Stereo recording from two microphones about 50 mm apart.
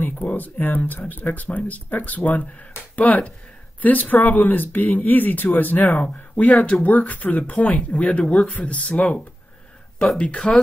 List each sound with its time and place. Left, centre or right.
0.0 s speech: left; by 10.6 s centre